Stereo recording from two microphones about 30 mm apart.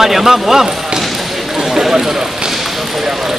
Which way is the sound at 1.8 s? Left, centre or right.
Centre.